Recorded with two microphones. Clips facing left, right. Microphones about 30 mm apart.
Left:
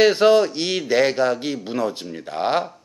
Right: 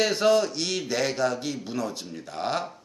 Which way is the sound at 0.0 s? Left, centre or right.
Left.